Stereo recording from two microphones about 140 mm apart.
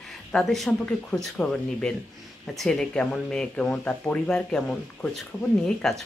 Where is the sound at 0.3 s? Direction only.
5° left (ahead or behind).